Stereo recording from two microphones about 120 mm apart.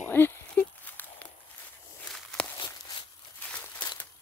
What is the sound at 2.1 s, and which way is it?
Walk, 5° left (ahead or behind).